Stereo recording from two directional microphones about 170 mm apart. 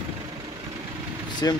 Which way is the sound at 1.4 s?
20° left (ahead or behind).